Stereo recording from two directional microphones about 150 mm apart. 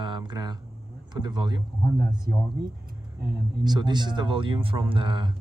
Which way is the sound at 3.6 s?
30° right (ahead or behind).